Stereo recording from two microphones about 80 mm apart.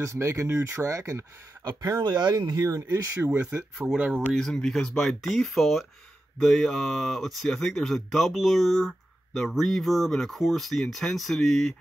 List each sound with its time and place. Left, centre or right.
0.0 s speech: right
3.8 s speech: centre
4.3 s speech: centre